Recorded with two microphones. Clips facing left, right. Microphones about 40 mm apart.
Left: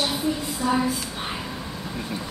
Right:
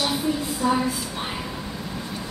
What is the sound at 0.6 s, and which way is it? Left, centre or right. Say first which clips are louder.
Speech: right 1 dB; centre.